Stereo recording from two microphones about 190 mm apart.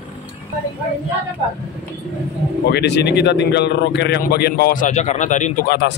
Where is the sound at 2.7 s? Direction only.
65° left (ahead or behind); by 5.7 s 40° left (ahead or behind).